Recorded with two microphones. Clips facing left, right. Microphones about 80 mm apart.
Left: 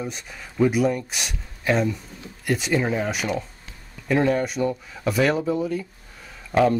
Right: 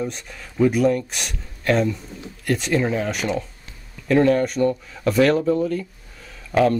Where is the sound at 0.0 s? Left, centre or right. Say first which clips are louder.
Right 4 dB; centre.